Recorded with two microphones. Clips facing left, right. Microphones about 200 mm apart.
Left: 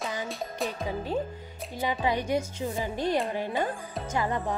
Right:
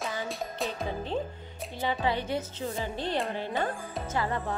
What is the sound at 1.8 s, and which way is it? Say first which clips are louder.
Speech: left 1 dB; 15° left (ahead or behind).